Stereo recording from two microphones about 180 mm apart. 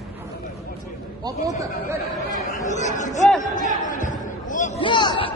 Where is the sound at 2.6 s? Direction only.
40° left (ahead or behind).